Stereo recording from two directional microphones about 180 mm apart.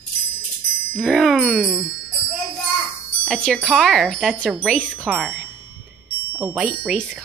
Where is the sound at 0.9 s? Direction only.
Centre (ahead or behind).